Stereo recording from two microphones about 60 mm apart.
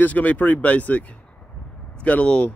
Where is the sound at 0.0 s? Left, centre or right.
Left.